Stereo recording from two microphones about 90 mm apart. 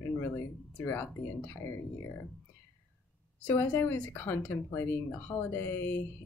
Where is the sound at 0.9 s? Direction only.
25° left (ahead or behind).